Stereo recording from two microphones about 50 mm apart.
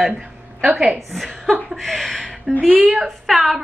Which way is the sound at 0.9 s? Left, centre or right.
Centre.